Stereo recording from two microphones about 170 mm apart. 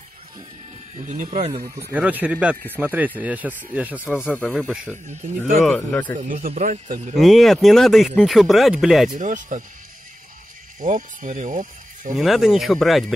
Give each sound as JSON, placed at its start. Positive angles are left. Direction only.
{"t": 0.9, "sound": "speech", "side_deg": -45}
{"t": 1.8, "sound": "speech", "side_deg": -10}
{"t": 4.0, "sound": "speech", "side_deg": 10}
{"t": 6.2, "sound": "speech", "side_deg": -55}
{"t": 7.2, "sound": "speech", "side_deg": 0}
{"t": 9.1, "sound": "speech", "side_deg": -50}
{"t": 10.8, "sound": "speech", "side_deg": -50}
{"t": 12.2, "sound": "speech", "side_deg": 0}